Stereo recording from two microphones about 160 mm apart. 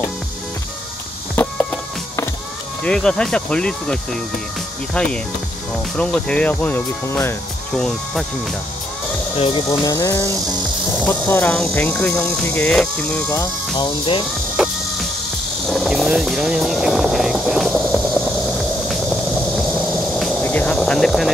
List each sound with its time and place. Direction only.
1.3 s a sound: 10° left (ahead or behind)
2.8 s speech: 5° left (ahead or behind)
7.7 s speech: centre (ahead or behind)
9.4 s speech: 35° left (ahead or behind)
9.7 s music: 20° left (ahead or behind)
11.1 s speech: 10° left (ahead or behind)
13.7 s speech: 35° left (ahead or behind)
14.6 s music: centre (ahead or behind)
15.7 s vehicle: centre (ahead or behind)
19.9 s a sound: centre (ahead or behind)
20.4 s vehicle: 10° left (ahead or behind)